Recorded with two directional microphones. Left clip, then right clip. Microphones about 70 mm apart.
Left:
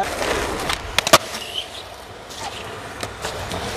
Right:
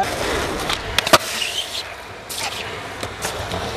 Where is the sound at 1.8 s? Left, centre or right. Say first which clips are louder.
Right 5 dB; right.